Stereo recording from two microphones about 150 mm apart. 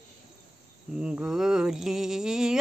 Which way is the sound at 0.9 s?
5° right (ahead or behind).